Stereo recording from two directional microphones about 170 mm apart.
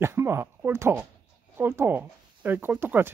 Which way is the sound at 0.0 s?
15° right (ahead or behind).